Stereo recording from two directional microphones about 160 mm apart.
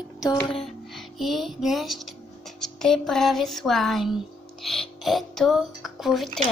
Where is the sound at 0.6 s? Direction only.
Centre (ahead or behind).